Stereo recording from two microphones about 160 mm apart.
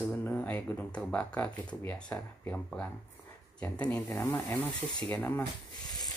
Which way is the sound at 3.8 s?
20° left (ahead or behind).